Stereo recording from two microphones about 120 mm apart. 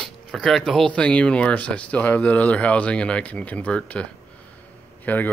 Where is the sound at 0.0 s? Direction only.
5° left (ahead or behind).